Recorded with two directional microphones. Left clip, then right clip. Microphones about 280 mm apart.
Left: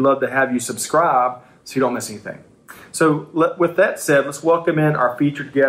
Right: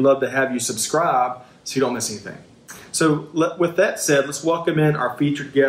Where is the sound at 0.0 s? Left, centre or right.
Centre.